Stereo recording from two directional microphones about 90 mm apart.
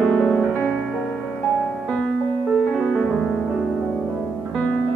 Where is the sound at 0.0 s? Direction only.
Centre (ahead or behind).